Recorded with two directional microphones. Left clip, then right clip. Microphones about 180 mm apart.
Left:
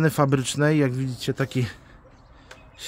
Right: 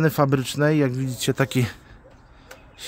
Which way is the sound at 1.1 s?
30° right (ahead or behind).